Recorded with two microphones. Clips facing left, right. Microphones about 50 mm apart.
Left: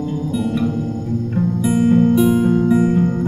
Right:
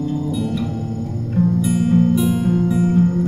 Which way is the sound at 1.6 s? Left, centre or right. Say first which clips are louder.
Left 5 dB; centre.